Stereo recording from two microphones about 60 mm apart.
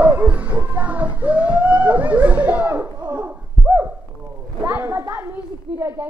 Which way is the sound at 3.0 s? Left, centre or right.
Right.